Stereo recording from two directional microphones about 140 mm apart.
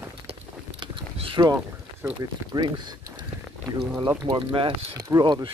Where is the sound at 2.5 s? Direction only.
30° right (ahead or behind).